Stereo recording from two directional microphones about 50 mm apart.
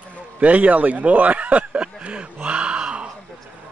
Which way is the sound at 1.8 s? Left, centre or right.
Right.